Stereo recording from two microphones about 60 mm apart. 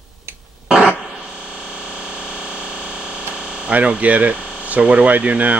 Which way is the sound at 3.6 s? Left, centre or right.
Right.